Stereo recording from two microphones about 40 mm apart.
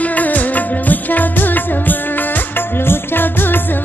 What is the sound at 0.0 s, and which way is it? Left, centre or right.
Music, left.